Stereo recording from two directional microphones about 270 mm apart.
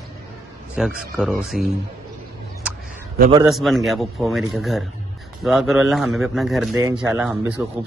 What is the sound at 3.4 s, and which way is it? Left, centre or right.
A man's voice, centre.